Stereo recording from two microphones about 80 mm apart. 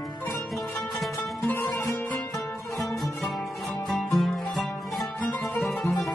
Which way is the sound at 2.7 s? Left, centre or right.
Centre.